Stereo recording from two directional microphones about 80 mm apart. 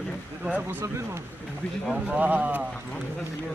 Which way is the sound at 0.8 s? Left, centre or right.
Right.